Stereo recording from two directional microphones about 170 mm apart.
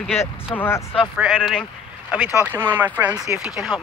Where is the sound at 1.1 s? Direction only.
5° right (ahead or behind).